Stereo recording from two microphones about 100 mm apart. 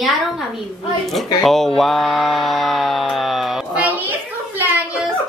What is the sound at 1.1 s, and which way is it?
Speech, centre (ahead or behind).